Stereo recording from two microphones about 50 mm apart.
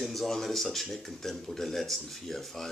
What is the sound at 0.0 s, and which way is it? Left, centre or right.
Speech, centre.